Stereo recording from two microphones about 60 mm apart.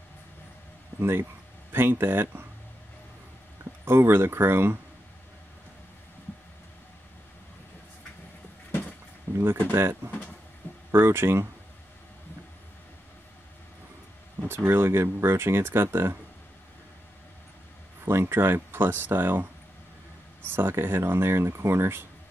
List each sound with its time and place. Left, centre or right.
1.7 s speech: right
3.8 s speech: right
9.4 s speech: right
14.5 s speech: right
18.0 s speech: right
20.4 s speech: right